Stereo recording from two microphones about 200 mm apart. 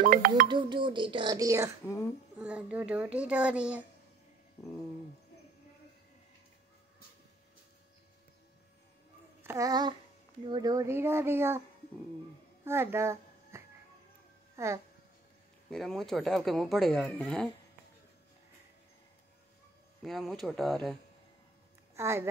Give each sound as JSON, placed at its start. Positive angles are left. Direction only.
{"t": 0.0, "sound": "speech", "side_deg": -40}
{"t": 0.5, "sound": "speech", "side_deg": -25}
{"t": 2.3, "sound": "speech", "side_deg": -5}
{"t": 9.4, "sound": "a sound", "side_deg": -15}
{"t": 10.4, "sound": "speech", "side_deg": -20}
{"t": 12.6, "sound": "speech", "side_deg": -10}
{"t": 14.5, "sound": "music", "side_deg": -15}
{"t": 15.7, "sound": "speech", "side_deg": 0}
{"t": 20.0, "sound": "speech", "side_deg": 0}
{"t": 21.9, "sound": "a woman's voice", "side_deg": -15}